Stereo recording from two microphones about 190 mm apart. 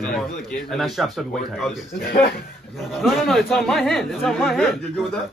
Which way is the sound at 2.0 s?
50° left (ahead or behind).